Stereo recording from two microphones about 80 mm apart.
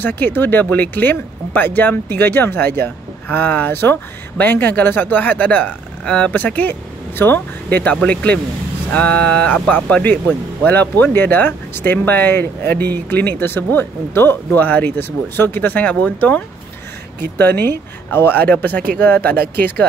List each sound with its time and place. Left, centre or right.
0.0 s speech: left